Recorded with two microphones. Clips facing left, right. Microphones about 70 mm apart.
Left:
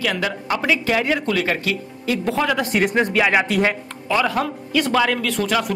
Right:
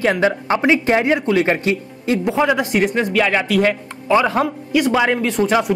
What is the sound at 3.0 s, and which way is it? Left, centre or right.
Speech, centre.